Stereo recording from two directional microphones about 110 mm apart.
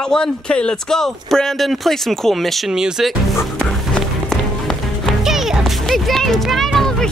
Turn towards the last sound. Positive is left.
turn(degrees=5)  # may be behind; listen again after turning